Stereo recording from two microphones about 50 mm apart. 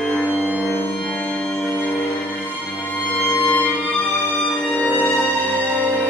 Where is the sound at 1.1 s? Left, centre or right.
Centre.